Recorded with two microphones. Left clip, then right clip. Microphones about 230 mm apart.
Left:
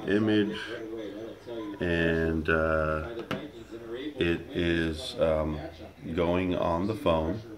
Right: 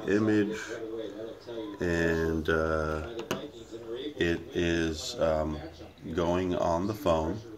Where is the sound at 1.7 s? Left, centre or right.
Centre.